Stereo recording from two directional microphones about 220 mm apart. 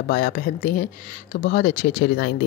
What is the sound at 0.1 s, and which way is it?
Speech, 45° left (ahead or behind).